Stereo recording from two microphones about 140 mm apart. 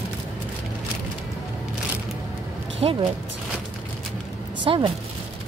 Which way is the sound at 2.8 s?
45° right (ahead or behind).